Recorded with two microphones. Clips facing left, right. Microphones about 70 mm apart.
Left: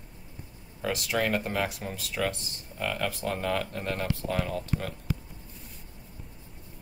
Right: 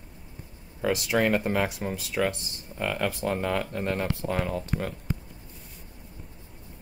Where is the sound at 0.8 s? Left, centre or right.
Centre.